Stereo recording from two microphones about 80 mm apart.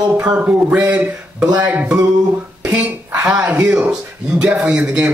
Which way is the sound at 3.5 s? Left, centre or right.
Centre.